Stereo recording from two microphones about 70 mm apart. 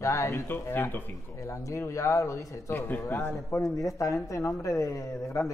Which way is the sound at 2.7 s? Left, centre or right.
Left.